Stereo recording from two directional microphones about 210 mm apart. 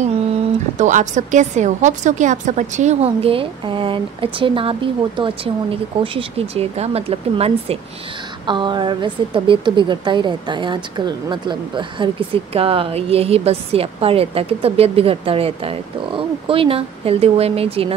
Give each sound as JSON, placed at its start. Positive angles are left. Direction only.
{"t": 0.7, "sound": "a woman's voice", "side_deg": -35}